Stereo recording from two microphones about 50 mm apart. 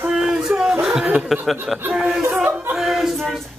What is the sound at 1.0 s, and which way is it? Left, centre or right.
Speech, right.